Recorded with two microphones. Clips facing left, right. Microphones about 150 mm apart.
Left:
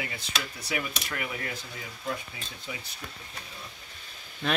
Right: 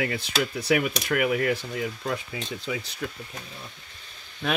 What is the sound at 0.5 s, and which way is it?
Speech, 65° right (ahead or behind).